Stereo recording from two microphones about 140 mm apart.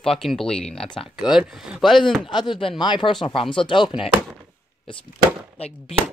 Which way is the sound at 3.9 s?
5° right (ahead or behind).